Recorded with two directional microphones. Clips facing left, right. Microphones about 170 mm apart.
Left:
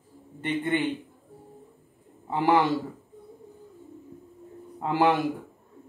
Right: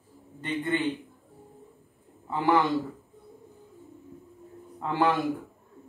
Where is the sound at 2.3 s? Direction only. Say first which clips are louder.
Left 2 dB; 20° left (ahead or behind).